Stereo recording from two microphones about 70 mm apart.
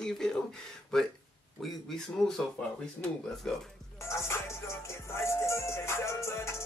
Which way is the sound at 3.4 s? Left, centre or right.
Centre.